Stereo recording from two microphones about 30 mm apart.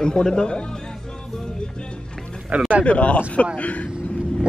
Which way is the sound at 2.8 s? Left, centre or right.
Left.